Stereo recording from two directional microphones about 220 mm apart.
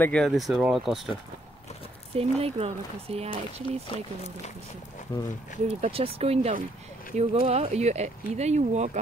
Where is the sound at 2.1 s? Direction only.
25° right (ahead or behind).